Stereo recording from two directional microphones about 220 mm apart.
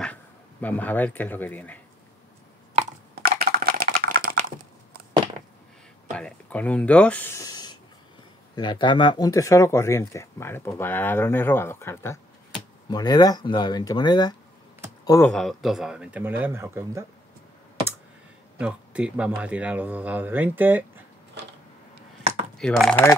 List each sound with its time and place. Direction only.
0.0 s speech: 5° left (ahead or behind)
3.2 s typing: 45° right (ahead or behind)
6.1 s speech: 5° left (ahead or behind); by 17.0 s 10° right (ahead or behind)
18.6 s speech: 5° right (ahead or behind)
22.6 s speech: 5° left (ahead or behind)